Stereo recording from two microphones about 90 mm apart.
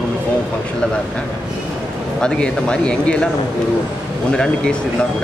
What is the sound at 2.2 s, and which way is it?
Speech, 10° left (ahead or behind).